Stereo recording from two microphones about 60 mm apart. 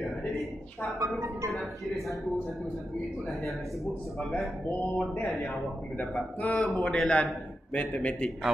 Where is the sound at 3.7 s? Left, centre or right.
Centre.